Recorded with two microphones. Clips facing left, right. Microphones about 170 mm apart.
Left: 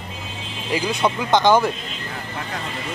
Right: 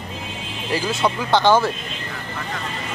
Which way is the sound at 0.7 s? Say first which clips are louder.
Even; 15° left (ahead or behind).